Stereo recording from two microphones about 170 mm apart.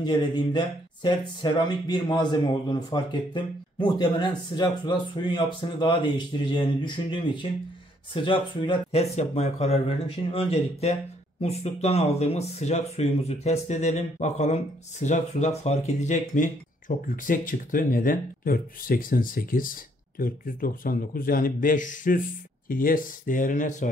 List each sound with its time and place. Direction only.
0.0 s a man's voice: 25° left (ahead or behind); by 23.9 s 45° left (ahead or behind)